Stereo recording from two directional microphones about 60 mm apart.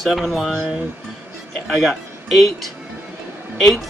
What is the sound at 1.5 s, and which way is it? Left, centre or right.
Speech, centre.